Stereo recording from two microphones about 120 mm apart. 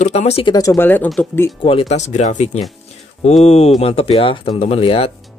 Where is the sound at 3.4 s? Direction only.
60° left (ahead or behind).